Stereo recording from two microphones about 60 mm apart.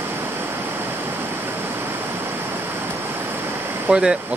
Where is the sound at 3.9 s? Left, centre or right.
Centre.